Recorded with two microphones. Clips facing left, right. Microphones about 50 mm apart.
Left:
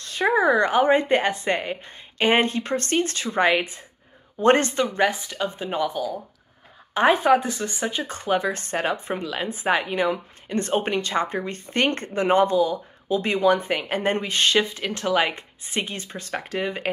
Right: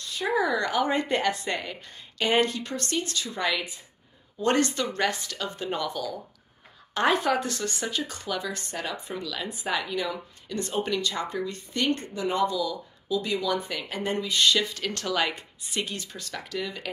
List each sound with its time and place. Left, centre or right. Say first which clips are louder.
0.2 s speech: left 6 dB; left
4.8 s speech: left 5 dB; centre
8.0 s speech: left 8 dB; left
14.7 s speech: left 6 dB; left